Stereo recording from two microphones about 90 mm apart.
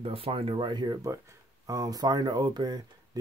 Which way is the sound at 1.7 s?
40° right (ahead or behind).